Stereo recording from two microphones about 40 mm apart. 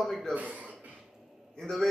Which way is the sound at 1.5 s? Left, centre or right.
Centre.